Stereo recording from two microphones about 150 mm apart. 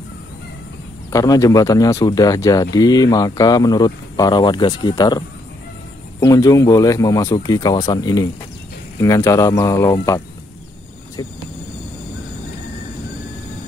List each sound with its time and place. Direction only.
1.1 s speech: 25° left (ahead or behind)